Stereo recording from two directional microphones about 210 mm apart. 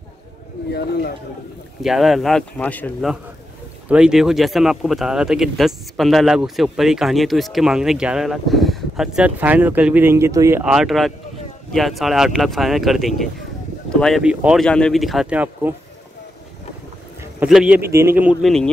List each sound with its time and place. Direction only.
0.7 s speech: 50° left (ahead or behind)
1.8 s speech: centre (ahead or behind)
3.9 s speech: 5° right (ahead or behind)
17.2 s a man's voice: 5° right (ahead or behind)